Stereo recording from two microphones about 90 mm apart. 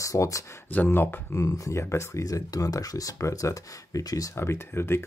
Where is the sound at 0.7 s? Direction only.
20° left (ahead or behind).